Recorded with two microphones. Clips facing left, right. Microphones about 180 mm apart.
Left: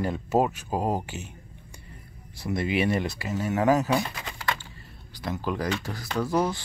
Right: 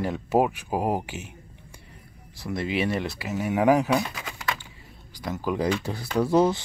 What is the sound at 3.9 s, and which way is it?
Typing, centre (ahead or behind).